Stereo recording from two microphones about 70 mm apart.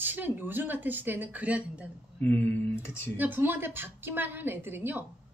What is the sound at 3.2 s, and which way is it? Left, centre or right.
A woman's voice, right.